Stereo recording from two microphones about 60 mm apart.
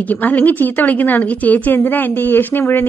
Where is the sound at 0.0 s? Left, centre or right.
Left.